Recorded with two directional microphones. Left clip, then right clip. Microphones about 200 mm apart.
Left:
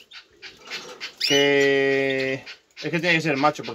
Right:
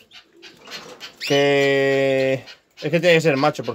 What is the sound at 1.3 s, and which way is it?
Speech, 50° right (ahead or behind).